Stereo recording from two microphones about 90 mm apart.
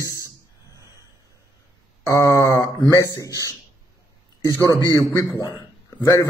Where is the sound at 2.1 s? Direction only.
35° left (ahead or behind).